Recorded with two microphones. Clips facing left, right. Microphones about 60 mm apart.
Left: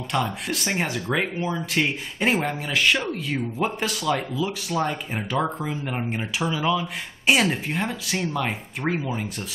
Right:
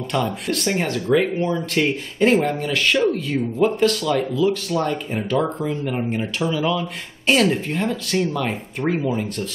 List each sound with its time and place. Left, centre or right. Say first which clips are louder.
0.1 s speech: right 3 dB; centre